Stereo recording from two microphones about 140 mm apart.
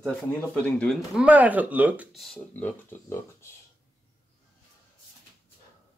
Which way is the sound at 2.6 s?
15° left (ahead or behind).